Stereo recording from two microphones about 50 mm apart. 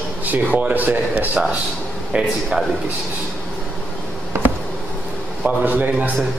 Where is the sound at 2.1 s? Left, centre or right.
Centre.